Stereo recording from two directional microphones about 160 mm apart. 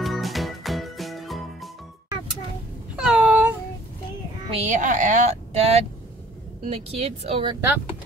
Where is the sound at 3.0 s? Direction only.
5° right (ahead or behind).